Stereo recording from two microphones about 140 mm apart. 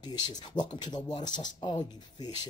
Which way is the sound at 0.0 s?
30° left (ahead or behind).